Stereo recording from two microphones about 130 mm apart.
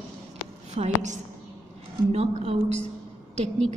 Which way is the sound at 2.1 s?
55° right (ahead or behind).